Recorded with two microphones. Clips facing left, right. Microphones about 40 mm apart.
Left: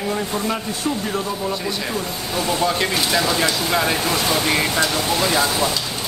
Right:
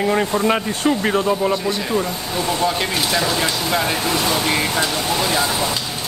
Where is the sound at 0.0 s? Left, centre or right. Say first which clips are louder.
Right 5 dB; right.